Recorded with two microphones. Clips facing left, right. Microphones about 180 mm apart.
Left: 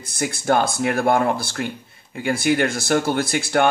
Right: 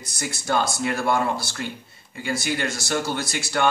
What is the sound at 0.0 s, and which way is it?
Speech, 55° left (ahead or behind).